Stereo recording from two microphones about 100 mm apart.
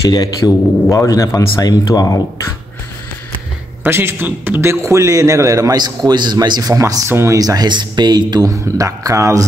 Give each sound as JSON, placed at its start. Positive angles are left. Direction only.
{"t": 0.1, "sound": "speech", "side_deg": 35}
{"t": 3.8, "sound": "a man's voice", "side_deg": -20}
{"t": 6.7, "sound": "speech", "side_deg": -30}
{"t": 7.3, "sound": "a man's voice", "side_deg": -40}